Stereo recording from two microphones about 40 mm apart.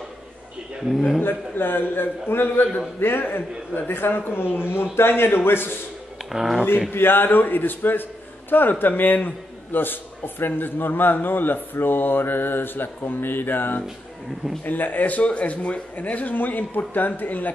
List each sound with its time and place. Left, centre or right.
0.8 s a man's voice: centre
1.2 s a man's voice: left
3.0 s a man's voice: left
6.3 s a man's voice: centre
6.9 s a man's voice: left